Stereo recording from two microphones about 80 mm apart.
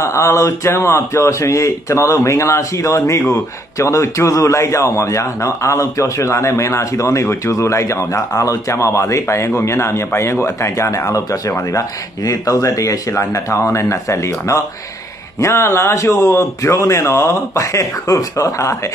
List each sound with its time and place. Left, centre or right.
0.0 s speech: left